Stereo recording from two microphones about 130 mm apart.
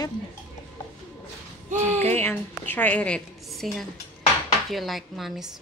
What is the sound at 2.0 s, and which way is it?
A woman's voice, 15° left (ahead or behind).